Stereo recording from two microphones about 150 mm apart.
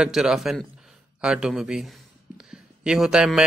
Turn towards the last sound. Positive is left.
turn(degrees=-5)  # may be behind; listen again after turning